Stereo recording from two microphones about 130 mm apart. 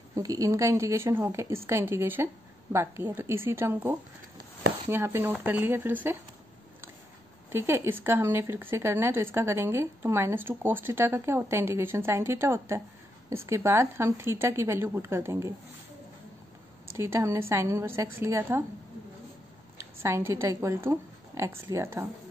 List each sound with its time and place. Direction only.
0.1 s speech: 25° right (ahead or behind)
7.5 s speech: 20° right (ahead or behind)
16.9 s speech: 20° right (ahead or behind)
19.8 s speech: 20° right (ahead or behind)